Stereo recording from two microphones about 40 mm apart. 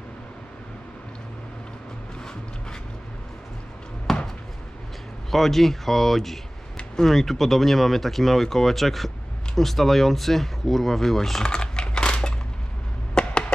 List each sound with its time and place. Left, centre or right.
4.1 s a sound: centre
5.3 s speech: centre
11.4 s typing: left
13.2 s chop: left